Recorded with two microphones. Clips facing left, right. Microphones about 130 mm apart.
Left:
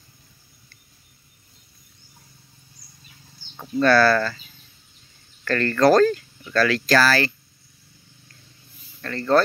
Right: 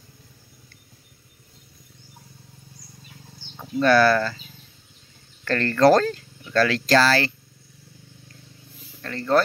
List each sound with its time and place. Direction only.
3.8 s speech: 15° right (ahead or behind)
5.4 s speech: 25° right (ahead or behind)
9.0 s speech: 15° right (ahead or behind)